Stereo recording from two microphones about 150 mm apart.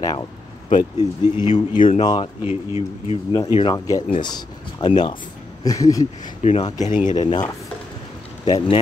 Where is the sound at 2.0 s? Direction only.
30° left (ahead or behind).